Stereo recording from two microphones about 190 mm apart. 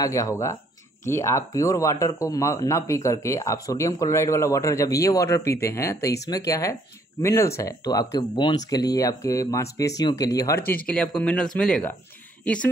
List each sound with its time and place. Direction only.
0.0 s speech: 15° left (ahead or behind)